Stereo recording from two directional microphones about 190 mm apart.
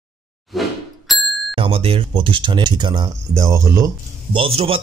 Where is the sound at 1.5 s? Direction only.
30° right (ahead or behind).